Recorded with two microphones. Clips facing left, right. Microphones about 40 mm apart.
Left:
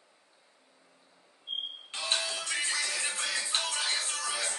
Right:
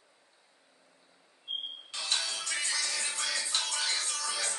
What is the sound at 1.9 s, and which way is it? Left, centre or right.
Music, left.